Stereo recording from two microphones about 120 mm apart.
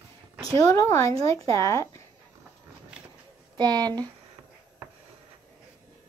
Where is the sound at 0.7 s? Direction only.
25° left (ahead or behind).